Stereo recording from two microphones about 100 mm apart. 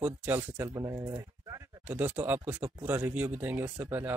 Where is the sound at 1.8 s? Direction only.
20° right (ahead or behind).